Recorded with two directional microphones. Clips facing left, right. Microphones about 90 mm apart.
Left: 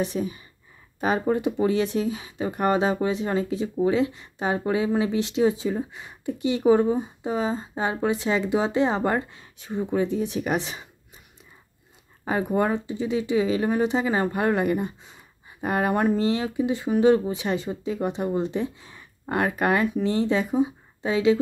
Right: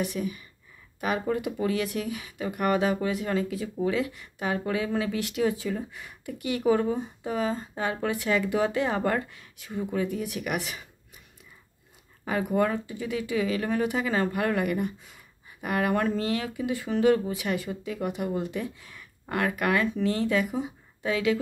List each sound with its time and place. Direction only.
0.0 s speech: 30° left (ahead or behind)
12.3 s speech: 25° left (ahead or behind)